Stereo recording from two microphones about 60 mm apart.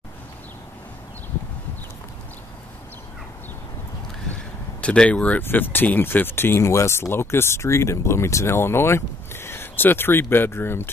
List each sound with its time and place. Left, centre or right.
4.8 s speech: centre
5.4 s speech: left